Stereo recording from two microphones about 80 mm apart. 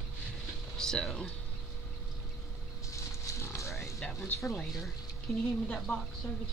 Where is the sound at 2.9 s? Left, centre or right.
Left.